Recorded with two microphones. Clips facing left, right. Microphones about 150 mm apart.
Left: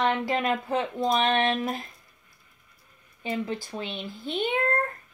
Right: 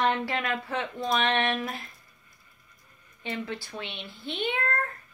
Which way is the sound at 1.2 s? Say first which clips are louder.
Left 1 dB; 35° left (ahead or behind).